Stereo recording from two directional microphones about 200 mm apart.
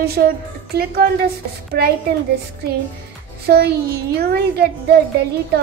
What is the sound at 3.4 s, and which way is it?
A woman's voice, 50° right (ahead or behind).